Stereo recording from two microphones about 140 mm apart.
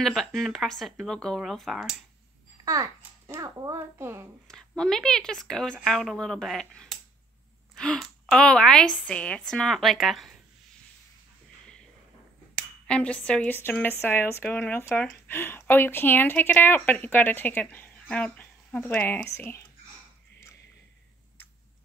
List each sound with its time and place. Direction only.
0.0 s a woman's voice: centre (ahead or behind)
2.6 s a child's voice: 25° right (ahead or behind)
4.5 s a woman's voice: 5° left (ahead or behind)
12.8 s speech: 10° left (ahead or behind)